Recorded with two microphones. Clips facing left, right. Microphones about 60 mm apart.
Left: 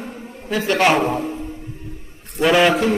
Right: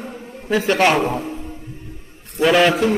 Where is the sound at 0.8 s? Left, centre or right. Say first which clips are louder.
Left 3 dB; centre.